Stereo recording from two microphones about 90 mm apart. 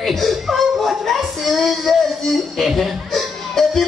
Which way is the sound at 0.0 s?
Centre (ahead or behind).